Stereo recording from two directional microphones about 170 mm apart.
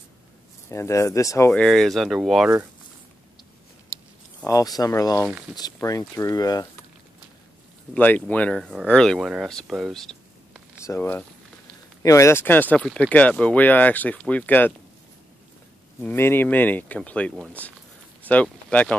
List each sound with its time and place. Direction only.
0.7 s speech: 15° left (ahead or behind)
1.5 s speech: 5° left (ahead or behind)
3.9 s a sound: 15° left (ahead or behind)
4.5 s speech: 20° left (ahead or behind)
7.9 s speech: 10° left (ahead or behind)
10.9 s speech: 10° left (ahead or behind)
16.0 s speech: 10° left (ahead or behind)